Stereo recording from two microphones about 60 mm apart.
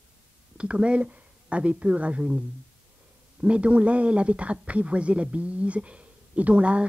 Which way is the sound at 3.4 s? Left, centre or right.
Centre.